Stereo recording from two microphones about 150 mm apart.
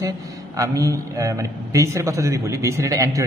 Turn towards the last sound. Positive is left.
turn(degrees=-20)  # may be behind; listen again after turning